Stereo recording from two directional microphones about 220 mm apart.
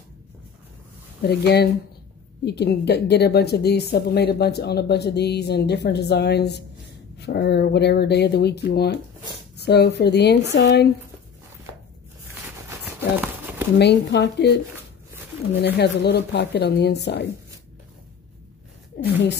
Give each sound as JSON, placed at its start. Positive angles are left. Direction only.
{"t": 1.2, "sound": "a woman's voice", "side_deg": 45}
{"t": 12.6, "sound": "horse", "side_deg": -10}
{"t": 13.7, "sound": "a woman's voice", "side_deg": 50}
{"t": 15.5, "sound": "a woman's voice", "side_deg": 50}
{"t": 18.9, "sound": "a sound", "side_deg": 50}